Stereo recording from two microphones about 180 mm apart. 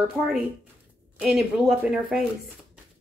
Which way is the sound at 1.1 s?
5° right (ahead or behind).